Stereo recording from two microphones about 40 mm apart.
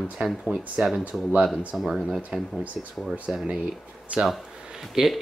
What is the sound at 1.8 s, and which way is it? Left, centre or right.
Speech, centre.